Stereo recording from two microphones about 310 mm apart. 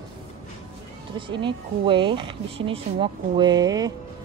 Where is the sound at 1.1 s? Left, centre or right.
Centre.